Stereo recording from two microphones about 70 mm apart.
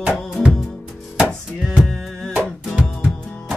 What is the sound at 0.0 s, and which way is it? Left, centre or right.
Music, centre.